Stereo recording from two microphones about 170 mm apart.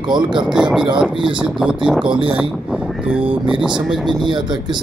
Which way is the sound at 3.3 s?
30° right (ahead or behind).